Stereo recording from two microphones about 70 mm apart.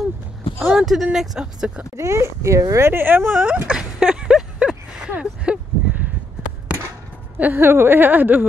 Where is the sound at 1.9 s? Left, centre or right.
Right.